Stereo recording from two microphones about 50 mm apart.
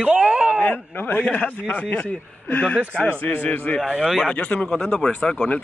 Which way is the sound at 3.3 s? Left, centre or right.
Left.